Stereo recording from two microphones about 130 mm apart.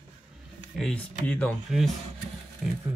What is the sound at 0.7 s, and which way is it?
Speech, 5° left (ahead or behind).